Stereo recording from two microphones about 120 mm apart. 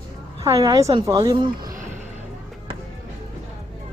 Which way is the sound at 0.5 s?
30° right (ahead or behind).